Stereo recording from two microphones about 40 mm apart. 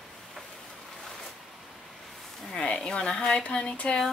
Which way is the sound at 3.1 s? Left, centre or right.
Left.